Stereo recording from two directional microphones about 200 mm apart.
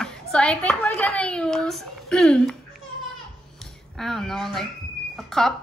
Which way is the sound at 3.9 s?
Centre (ahead or behind).